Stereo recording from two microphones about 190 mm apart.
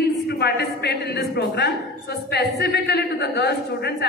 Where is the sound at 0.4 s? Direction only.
60° left (ahead or behind).